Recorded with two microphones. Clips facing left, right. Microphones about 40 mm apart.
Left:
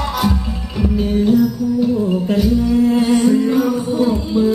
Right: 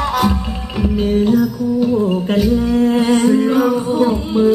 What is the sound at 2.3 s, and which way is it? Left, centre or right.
Music, right.